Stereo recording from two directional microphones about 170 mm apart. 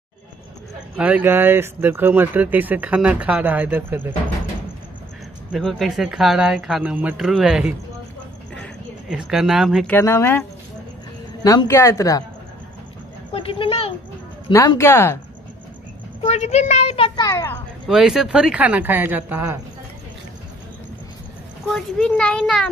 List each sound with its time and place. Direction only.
0.9 s speech: 10° right (ahead or behind)
5.5 s speech: centre (ahead or behind)
9.1 s speech: 5° right (ahead or behind)
9.8 s speech: 15° left (ahead or behind)
11.4 s speech: 20° left (ahead or behind)
13.3 s a woman's voice: 35° left (ahead or behind)
14.5 s speech: 20° left (ahead or behind)
16.2 s a woman's voice: 40° left (ahead or behind)
17.3 s speech: 20° left (ahead or behind)
17.8 s speech: centre (ahead or behind)
21.6 s speech: 5° left (ahead or behind)